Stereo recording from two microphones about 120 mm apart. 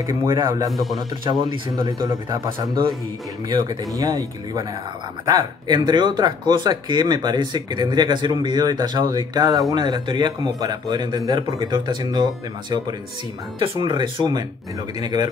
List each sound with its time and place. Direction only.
0.1 s speech: 35° right (ahead or behind)
0.7 s speech: centre (ahead or behind)
1.2 s speech: 45° right (ahead or behind)